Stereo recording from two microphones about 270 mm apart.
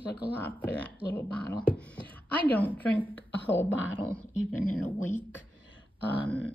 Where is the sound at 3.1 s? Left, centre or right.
Left.